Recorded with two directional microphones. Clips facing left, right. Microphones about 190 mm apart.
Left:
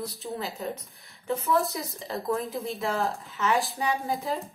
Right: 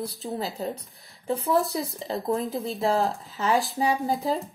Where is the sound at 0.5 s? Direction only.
30° right (ahead or behind).